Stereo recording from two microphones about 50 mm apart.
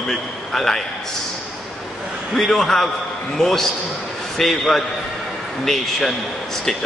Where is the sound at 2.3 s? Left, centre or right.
Centre.